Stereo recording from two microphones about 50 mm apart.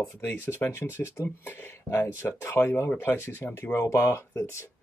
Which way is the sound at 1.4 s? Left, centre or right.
Left.